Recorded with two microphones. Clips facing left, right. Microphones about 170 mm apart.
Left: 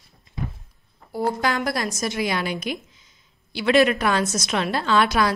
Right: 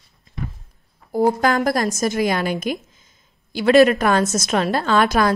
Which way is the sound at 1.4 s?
45° right (ahead or behind).